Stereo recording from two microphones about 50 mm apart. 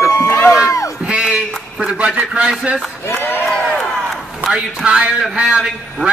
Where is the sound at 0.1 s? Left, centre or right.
Left.